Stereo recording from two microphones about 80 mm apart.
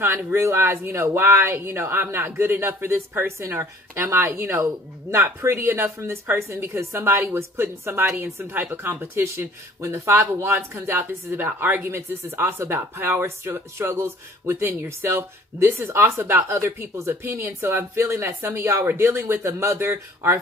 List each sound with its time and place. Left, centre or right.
0.3 s speech: right